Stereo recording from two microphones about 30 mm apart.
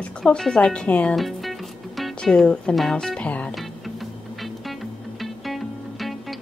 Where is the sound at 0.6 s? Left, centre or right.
Left.